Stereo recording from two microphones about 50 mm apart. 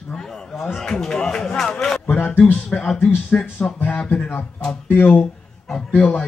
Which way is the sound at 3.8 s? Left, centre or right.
Left.